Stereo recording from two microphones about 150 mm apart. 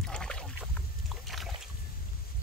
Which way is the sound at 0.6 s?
Centre (ahead or behind).